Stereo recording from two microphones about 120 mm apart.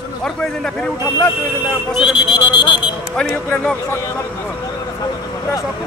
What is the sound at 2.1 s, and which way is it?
Speech, 40° left (ahead or behind).